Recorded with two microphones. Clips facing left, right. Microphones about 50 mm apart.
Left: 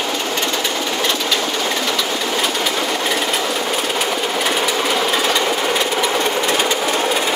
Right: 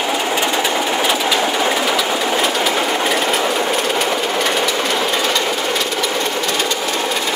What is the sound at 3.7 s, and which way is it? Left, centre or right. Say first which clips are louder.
Train: right 2 dB; centre.